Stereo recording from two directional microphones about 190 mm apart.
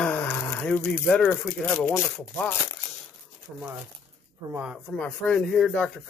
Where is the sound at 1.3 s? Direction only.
5° left (ahead or behind).